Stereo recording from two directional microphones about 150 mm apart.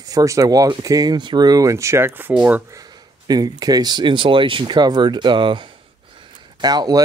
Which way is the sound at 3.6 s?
25° right (ahead or behind).